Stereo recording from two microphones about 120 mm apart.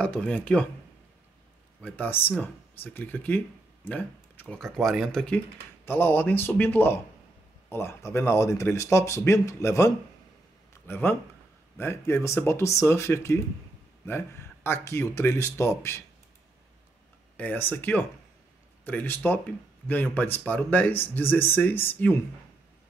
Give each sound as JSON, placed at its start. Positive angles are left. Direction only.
{"t": 0.3, "sound": "speech", "side_deg": 10}
{"t": 1.8, "sound": "speech", "side_deg": 15}
{"t": 5.9, "sound": "speech", "side_deg": 15}
{"t": 17.4, "sound": "speech", "side_deg": 15}